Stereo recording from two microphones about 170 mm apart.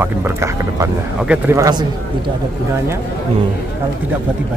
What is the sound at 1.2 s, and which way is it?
Speech, 5° right (ahead or behind).